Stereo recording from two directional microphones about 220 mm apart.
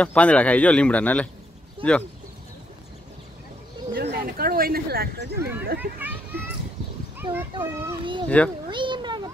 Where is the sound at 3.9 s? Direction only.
40° right (ahead or behind).